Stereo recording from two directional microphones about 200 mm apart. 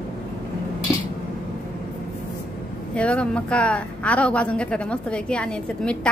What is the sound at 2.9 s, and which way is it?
A woman's voice, 5° left (ahead or behind).